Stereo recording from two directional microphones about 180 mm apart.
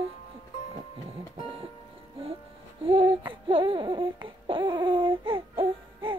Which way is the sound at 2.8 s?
30° right (ahead or behind).